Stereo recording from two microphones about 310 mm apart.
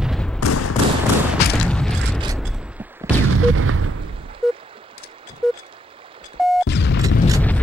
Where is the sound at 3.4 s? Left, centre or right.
Right.